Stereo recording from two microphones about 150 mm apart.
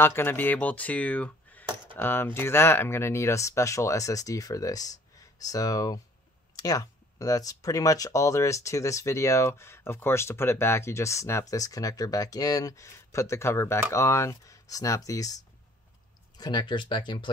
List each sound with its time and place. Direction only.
0.0 s speech: 15° left (ahead or behind); by 17.3 s 30° left (ahead or behind)